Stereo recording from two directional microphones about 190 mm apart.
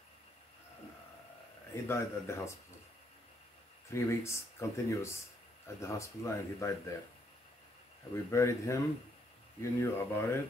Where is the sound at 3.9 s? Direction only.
15° left (ahead or behind).